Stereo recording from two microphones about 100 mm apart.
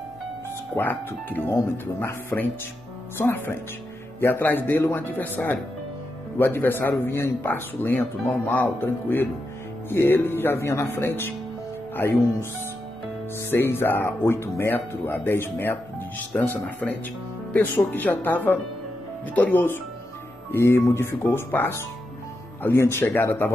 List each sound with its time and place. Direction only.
0.7 s speech: 20° left (ahead or behind)
13.5 s speech: 25° left (ahead or behind)